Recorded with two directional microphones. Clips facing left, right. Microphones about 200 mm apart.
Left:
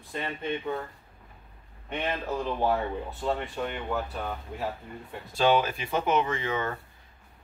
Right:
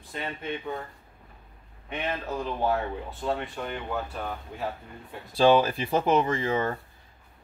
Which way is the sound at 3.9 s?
Centre (ahead or behind).